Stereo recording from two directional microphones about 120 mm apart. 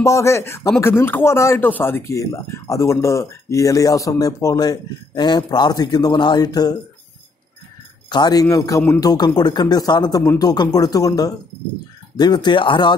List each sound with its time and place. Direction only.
0.0 s speech: 25° left (ahead or behind)
8.1 s speech: 35° left (ahead or behind)